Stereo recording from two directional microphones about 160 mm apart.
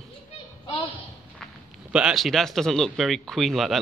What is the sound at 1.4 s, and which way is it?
Speech, 5° right (ahead or behind).